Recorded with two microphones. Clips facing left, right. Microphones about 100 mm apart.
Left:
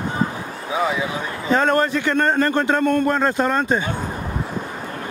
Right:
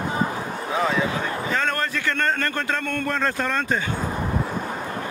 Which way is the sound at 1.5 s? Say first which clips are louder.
Left 10 dB; 25° left (ahead or behind).